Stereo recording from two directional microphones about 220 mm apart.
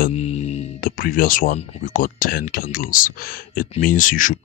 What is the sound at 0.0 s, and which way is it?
Speech, 30° left (ahead or behind).